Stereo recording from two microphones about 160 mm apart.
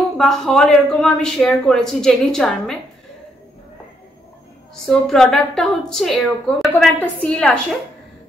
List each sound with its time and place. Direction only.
0.2 s a woman's voice: 5° left (ahead or behind)
4.8 s a woman's voice: 5° left (ahead or behind)